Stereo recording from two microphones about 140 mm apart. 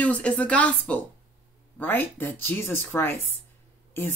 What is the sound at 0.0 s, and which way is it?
Speech, 10° left (ahead or behind).